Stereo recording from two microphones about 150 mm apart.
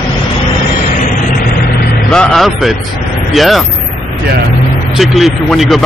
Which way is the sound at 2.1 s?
5° left (ahead or behind).